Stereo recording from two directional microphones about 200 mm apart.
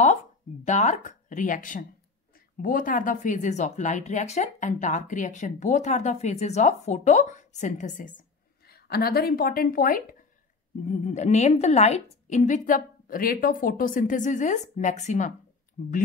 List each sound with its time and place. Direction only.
0.7 s speech: 35° left (ahead or behind)
8.6 s a woman's voice: 50° left (ahead or behind)